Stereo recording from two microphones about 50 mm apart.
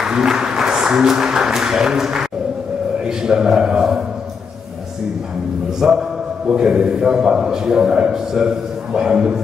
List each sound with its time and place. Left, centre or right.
0.0 s speech: centre
3.3 s a man's voice: centre
5.8 s a man's voice: centre